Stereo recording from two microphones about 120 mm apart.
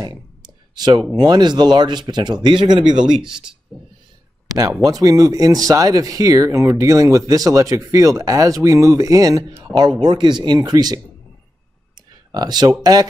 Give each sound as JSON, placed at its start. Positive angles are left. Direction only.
{"t": 0.7, "sound": "speech", "side_deg": -35}
{"t": 4.8, "sound": "speech", "side_deg": -30}
{"t": 12.3, "sound": "speech", "side_deg": -35}